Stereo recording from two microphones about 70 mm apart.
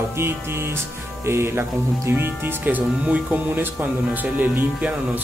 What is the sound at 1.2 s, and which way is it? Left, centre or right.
Speech, right.